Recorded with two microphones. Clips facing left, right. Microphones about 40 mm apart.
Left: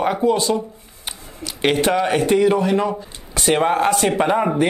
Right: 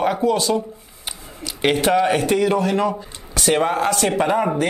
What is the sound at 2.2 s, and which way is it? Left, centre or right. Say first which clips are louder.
Speech: left 2 dB; left.